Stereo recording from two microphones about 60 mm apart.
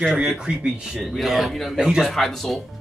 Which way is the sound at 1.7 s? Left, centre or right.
Centre.